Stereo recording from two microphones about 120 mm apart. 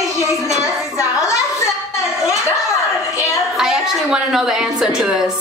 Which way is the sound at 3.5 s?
5° right (ahead or behind).